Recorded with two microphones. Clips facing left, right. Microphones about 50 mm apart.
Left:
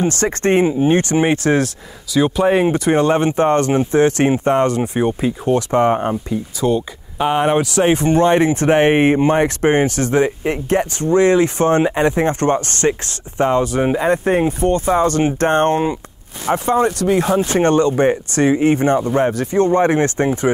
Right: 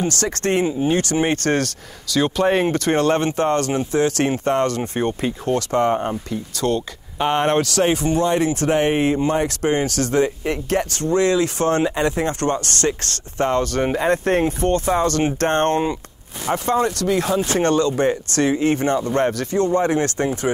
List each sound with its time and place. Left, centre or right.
0.0 s speech: left
1.2 s speech: centre
7.9 s speech: left; by 19.5 s centre
19.5 s speech: left